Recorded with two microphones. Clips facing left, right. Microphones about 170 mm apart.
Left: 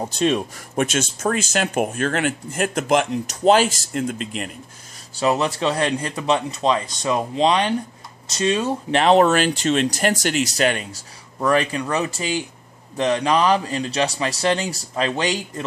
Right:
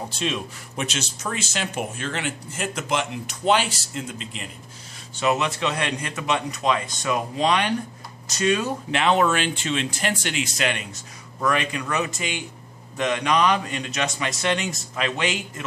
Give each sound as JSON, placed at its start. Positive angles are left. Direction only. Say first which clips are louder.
{"t": 0.1, "sound": "speech", "louder": "left 8 dB", "side_deg": 45}
{"t": 5.2, "sound": "speech", "louder": "left 3 dB", "side_deg": 35}